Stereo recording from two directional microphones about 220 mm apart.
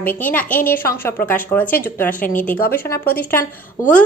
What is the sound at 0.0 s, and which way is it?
Speech, 40° left (ahead or behind).